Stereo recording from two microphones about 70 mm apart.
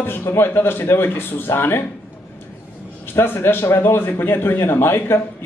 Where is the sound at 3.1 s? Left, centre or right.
Left.